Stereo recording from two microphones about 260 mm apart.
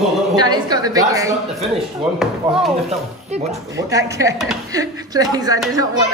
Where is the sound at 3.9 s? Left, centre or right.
Centre.